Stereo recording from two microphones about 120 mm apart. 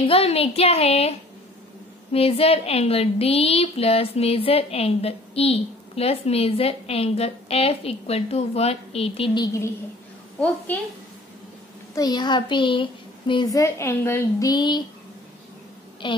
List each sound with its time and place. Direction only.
0.0 s a woman's voice: 55° left (ahead or behind)
2.1 s a woman's voice: 55° left (ahead or behind)
9.4 s a woman's voice: 25° left (ahead or behind)
11.9 s a child's voice: 35° left (ahead or behind)
13.5 s a woman's voice: 25° left (ahead or behind)
14.5 s a child's voice: 40° left (ahead or behind)
16.0 s a woman's voice: 40° left (ahead or behind)